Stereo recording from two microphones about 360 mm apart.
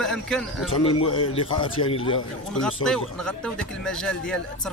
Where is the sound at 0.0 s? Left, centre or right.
Centre.